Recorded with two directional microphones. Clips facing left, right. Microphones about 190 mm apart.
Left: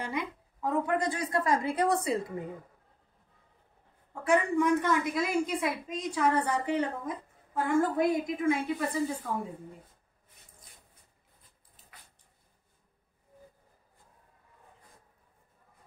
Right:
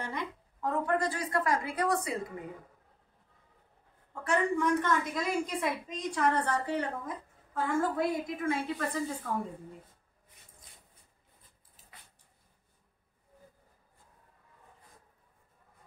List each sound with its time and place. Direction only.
0.0 s a woman's voice: 10° left (ahead or behind); by 2.2 s 25° left (ahead or behind)
4.1 s a woman's voice: 10° left (ahead or behind)